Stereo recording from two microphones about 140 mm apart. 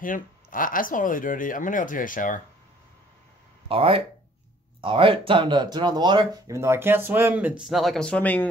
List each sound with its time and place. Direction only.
0.0 s speech: 75° left (ahead or behind)
3.6 s speech: 40° right (ahead or behind); by 8.5 s 10° left (ahead or behind)